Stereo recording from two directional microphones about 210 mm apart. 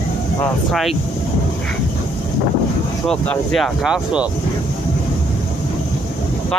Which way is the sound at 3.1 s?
Centre (ahead or behind).